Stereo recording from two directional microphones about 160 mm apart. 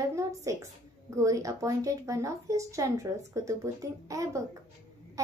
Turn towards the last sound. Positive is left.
turn(degrees=-20)  # may be behind; listen again after turning